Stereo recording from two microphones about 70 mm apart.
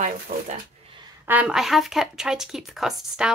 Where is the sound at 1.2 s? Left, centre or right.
Right.